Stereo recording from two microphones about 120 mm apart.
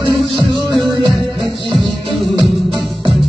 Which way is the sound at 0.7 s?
40° right (ahead or behind).